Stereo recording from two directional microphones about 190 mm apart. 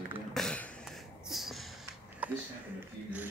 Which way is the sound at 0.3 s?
5° left (ahead or behind).